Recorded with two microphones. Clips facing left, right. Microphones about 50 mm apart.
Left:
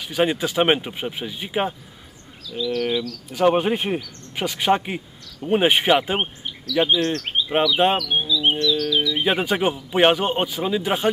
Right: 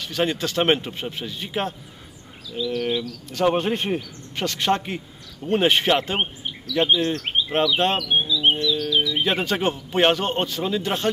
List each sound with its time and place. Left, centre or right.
0.0 s a man's voice: centre
2.5 s bird: centre
3.3 s a man's voice: centre
6.9 s bird: centre
9.2 s a man's voice: centre